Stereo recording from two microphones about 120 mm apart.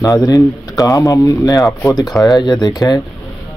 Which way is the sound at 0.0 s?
25° left (ahead or behind).